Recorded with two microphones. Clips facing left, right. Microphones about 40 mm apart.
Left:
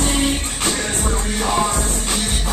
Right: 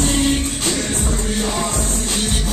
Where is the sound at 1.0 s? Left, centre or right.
Left.